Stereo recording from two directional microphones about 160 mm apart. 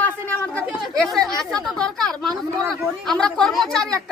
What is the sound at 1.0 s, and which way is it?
A woman's voice, centre (ahead or behind).